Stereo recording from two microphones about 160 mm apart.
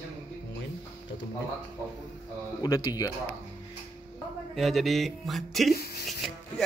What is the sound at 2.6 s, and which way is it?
Speech, 25° left (ahead or behind).